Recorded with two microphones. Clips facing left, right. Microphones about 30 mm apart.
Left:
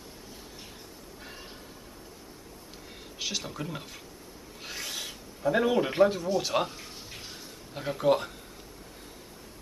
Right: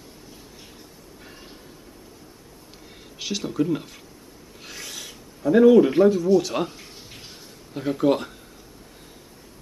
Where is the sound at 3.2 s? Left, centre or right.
Centre.